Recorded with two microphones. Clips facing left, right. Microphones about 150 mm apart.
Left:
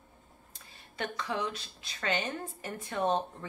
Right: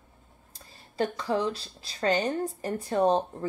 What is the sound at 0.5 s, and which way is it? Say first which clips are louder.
Speech: right 10 dB; 35° right (ahead or behind).